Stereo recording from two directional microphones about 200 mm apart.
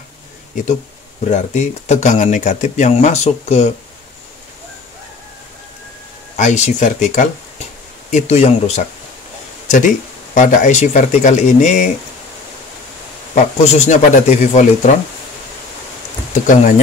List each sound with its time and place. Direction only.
1.3 s speech: 35° left (ahead or behind)
6.3 s speech: 35° left (ahead or behind)
13.3 s speech: 35° left (ahead or behind)
16.4 s speech: 40° left (ahead or behind)